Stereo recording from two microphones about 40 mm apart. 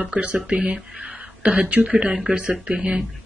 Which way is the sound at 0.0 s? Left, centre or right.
Right.